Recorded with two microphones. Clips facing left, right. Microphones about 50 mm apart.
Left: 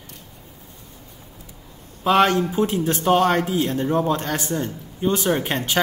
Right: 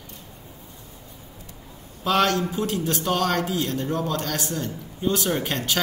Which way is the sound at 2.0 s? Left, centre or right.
Centre.